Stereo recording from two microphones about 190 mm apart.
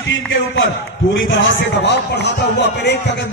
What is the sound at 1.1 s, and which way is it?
A man's voice, 70° left (ahead or behind).